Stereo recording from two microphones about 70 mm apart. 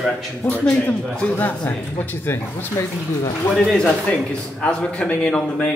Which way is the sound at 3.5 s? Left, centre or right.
Centre.